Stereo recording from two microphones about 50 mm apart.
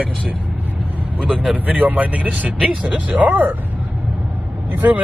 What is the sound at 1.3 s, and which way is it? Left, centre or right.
Speech, centre.